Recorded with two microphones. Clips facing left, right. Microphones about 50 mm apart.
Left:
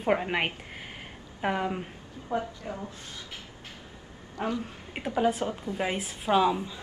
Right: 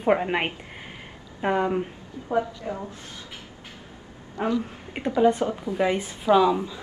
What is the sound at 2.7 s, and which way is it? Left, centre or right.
Speech, right.